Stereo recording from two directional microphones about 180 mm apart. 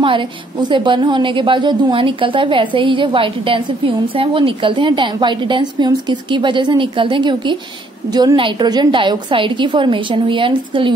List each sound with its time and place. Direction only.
0.0 s a woman's voice: 25° right (ahead or behind)